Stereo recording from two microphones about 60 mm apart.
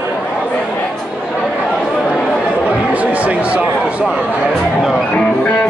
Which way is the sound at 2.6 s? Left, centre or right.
Right.